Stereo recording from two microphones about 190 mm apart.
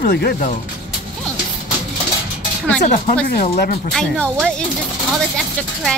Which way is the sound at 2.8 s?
40° left (ahead or behind).